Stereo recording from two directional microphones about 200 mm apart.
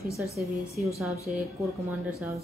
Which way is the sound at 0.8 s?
40° right (ahead or behind).